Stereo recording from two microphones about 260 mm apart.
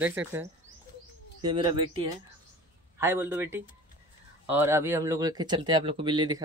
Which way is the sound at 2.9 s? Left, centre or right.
Centre.